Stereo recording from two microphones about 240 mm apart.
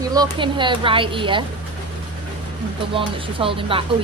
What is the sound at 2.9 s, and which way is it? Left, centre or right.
Speech, right.